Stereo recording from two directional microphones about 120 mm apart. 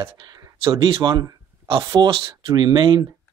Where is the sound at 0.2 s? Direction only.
35° right (ahead or behind).